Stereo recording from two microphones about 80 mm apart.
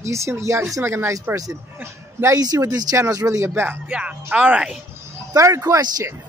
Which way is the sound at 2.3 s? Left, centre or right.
Right.